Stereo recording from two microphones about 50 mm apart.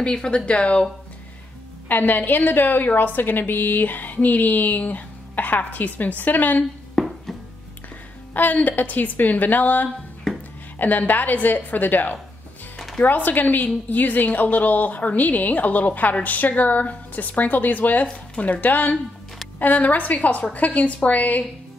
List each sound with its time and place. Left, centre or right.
0.0 s speech: centre
1.9 s a woman's voice: left
7.0 s music: centre
8.3 s a woman's voice: left
12.7 s music: centre
13.0 s a woman's voice: left